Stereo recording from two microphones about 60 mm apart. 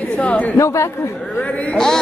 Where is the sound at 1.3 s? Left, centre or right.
Left.